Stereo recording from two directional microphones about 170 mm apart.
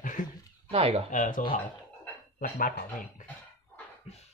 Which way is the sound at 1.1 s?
45° left (ahead or behind).